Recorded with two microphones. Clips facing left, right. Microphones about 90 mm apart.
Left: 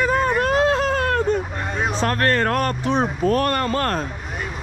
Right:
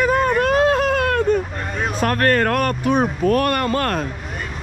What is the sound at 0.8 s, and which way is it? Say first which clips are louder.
Baby cry: right 2 dB; 35° left (ahead or behind).